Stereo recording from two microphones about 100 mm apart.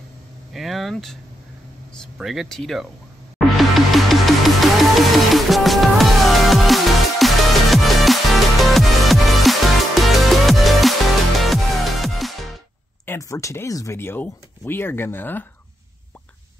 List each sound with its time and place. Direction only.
0.5 s vehicle: centre (ahead or behind)
2.1 s speech: centre (ahead or behind)
3.3 s music: centre (ahead or behind)
13.2 s speech: 30° left (ahead or behind)